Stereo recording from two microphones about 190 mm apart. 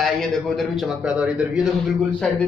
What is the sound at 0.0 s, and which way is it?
A man's voice, centre (ahead or behind).